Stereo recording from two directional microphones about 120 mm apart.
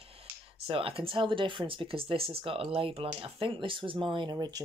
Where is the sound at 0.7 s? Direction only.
50° right (ahead or behind).